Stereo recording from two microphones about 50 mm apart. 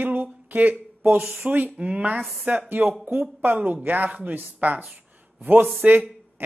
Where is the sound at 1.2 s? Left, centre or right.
Right.